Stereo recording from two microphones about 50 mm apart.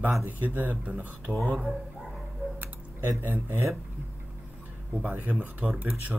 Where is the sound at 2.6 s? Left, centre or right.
Right.